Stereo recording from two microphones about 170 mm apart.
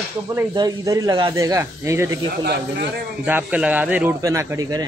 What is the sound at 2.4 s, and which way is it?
Speech, 75° right (ahead or behind).